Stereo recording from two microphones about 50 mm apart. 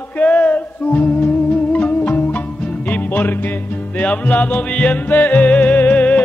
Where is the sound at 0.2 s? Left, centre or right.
Left.